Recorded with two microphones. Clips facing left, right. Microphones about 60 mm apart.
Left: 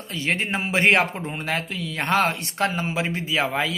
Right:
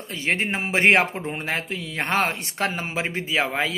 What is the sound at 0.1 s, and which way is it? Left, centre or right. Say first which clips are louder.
A man's voice: even; right.